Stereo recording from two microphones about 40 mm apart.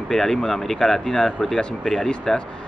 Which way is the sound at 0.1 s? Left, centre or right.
Centre.